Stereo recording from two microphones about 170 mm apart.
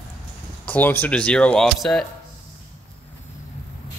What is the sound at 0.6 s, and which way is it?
Speech, 10° left (ahead or behind).